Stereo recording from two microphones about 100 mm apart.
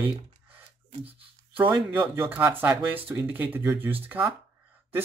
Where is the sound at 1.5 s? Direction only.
15° right (ahead or behind).